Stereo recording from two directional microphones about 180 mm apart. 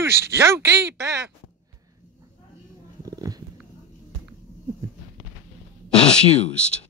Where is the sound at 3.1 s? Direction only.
20° right (ahead or behind).